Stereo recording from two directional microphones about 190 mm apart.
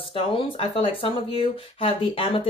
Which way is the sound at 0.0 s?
30° left (ahead or behind).